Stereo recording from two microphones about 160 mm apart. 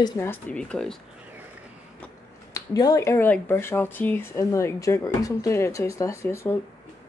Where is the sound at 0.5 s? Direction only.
5° left (ahead or behind).